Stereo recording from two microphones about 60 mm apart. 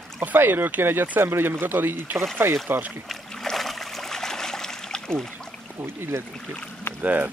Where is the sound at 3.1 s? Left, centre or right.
Centre.